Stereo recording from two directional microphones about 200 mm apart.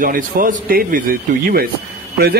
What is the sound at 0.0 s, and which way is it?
Speech, 45° right (ahead or behind).